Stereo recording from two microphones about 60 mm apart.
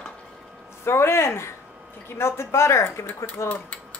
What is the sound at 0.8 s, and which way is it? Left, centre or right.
Speech, left.